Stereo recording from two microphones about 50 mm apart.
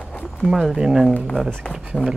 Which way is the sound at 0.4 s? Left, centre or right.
Centre.